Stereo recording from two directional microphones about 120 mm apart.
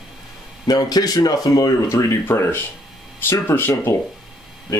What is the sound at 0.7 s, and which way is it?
Speech, 35° left (ahead or behind).